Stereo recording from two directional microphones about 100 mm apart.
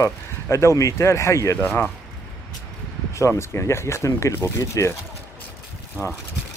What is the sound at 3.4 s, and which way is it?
Speech, 25° left (ahead or behind).